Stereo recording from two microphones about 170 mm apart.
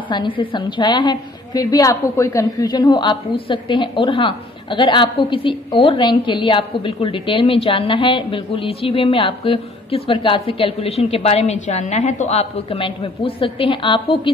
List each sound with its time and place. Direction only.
0.1 s a woman's voice: 30° left (ahead or behind)